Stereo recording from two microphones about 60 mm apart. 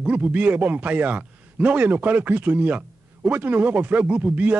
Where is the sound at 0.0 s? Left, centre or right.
Right.